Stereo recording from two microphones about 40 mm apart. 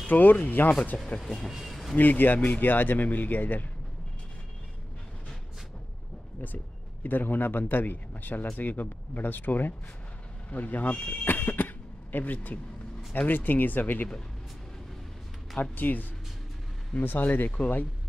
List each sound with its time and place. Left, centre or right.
0.0 s speech: left
1.0 s speech: left
1.5 s a sound: centre
2.0 s speech: left
6.4 s speech: left
15.6 s speech: left